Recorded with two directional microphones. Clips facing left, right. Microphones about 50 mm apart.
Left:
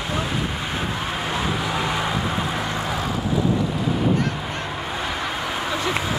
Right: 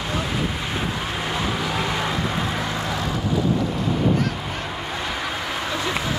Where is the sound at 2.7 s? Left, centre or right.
Left.